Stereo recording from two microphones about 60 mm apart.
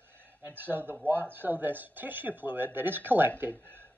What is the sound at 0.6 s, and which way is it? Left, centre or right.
Speech, right.